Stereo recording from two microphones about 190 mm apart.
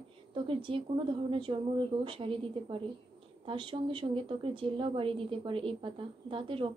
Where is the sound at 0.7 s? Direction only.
25° right (ahead or behind).